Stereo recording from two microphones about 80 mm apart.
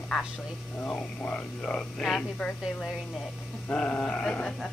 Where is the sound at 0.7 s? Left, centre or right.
Centre.